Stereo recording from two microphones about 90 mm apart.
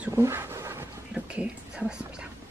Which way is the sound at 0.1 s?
30° right (ahead or behind).